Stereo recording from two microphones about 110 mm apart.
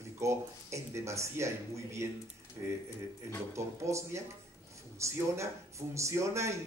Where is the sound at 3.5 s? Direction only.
25° right (ahead or behind).